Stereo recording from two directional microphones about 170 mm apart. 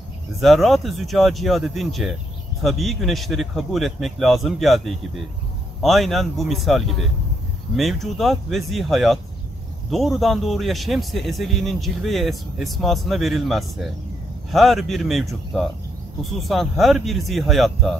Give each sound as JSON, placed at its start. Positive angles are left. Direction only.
{"t": 0.4, "sound": "a man's voice", "side_deg": 0}